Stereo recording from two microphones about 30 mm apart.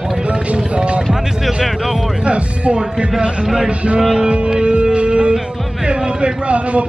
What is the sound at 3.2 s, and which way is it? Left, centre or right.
Speech, right.